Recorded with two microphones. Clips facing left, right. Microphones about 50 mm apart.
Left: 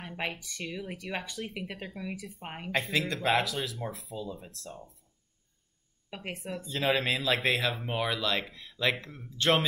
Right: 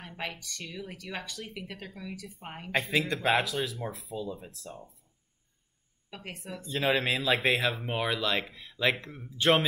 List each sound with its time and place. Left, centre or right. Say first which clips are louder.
0.0 s speech: left 2 dB; centre
2.7 s speech: right 2 dB; centre
6.0 s a sound: left 3 dB; centre
6.3 s speech: right 1 dB; centre